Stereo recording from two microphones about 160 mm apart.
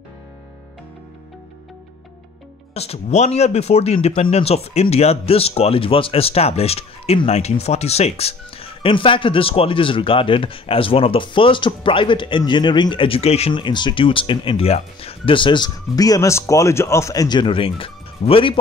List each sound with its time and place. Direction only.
2.7 s speech: 40° left (ahead or behind)